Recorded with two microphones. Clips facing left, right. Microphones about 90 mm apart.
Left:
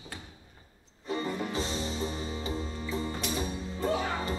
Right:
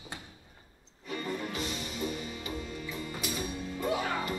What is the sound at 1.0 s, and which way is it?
Music, 30° left (ahead or behind).